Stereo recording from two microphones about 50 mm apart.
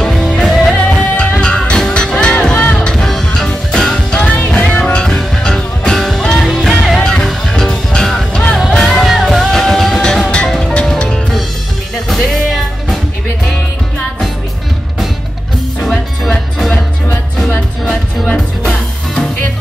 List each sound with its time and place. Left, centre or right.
0.0 s music: centre
0.8 s music: left
2.9 s music: centre
4.3 s music: left
4.9 s music: centre
7.0 s music: left
7.2 s music: centre
9.0 s music: centre
10.6 s music: centre
12.1 s music: centre
16.5 s music: centre
17.8 s music: centre